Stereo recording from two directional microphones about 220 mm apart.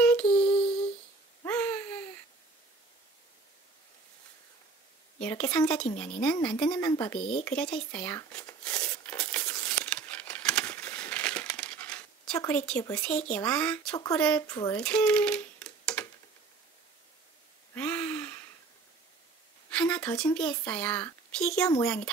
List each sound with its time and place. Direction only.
0.0 s lullaby: 5° left (ahead or behind)
1.4 s a sound: 10° left (ahead or behind)
5.2 s a child's voice: 5° left (ahead or behind)
9.2 s a sound: 5° left (ahead or behind)
12.8 s a child's voice: 10° left (ahead or behind)
14.2 s a child's voice: 5° left (ahead or behind)
17.7 s gasp: 5° left (ahead or behind)
19.7 s a sound: 5° left (ahead or behind)
20.3 s a child's voice: 5° left (ahead or behind)
21.6 s speech: 15° left (ahead or behind)